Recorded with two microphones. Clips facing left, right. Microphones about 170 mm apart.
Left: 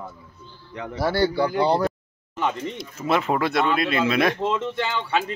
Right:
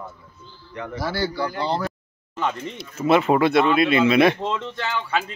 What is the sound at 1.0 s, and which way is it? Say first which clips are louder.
Speech: left 5 dB; 60° left (ahead or behind).